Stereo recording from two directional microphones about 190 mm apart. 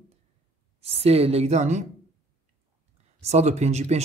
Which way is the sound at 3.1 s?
35° right (ahead or behind).